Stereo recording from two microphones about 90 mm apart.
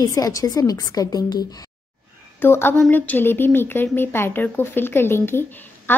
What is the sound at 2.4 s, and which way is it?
A woman's voice, 25° left (ahead or behind).